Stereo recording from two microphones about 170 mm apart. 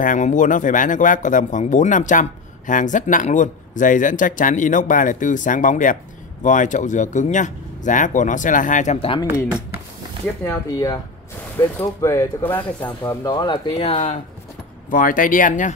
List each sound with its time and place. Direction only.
0.0 s speech: 50° left (ahead or behind)
11.8 s speech: 20° left (ahead or behind)
13.7 s speech: 35° left (ahead or behind)
14.9 s speech: 50° left (ahead or behind)